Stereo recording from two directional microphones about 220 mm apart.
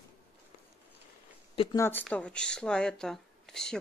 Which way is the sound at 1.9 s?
5° left (ahead or behind).